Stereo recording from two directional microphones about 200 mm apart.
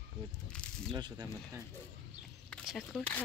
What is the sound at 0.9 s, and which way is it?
Speech, 20° right (ahead or behind).